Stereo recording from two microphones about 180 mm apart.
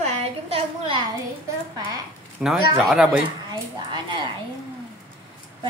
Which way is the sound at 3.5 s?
25° right (ahead or behind).